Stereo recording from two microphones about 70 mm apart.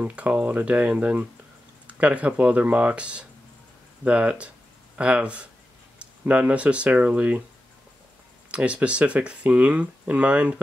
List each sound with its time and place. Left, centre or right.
0.0 s speech: right
8.5 s speech: centre